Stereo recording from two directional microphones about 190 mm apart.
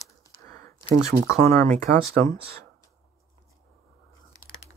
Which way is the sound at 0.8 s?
15° left (ahead or behind).